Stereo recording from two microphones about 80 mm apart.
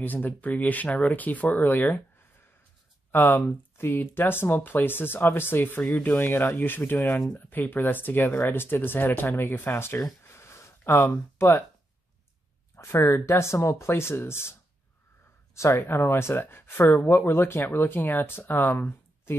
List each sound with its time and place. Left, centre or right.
0.0 s speech: left
3.1 s speech: left
10.2 s a sound: left
10.9 s speech: left
12.7 s speech: left
15.5 s speech: left